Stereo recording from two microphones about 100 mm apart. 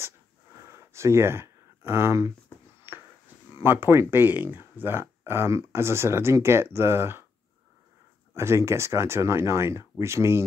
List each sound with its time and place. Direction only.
0.7 s a sound: 30° right (ahead or behind)
3.6 s speech: 25° right (ahead or behind)
8.4 s speech: 30° right (ahead or behind)